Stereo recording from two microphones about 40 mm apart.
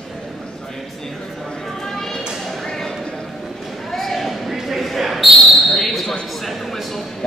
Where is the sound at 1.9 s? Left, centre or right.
Centre.